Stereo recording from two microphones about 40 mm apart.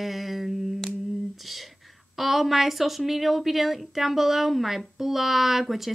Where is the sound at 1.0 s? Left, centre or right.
Centre.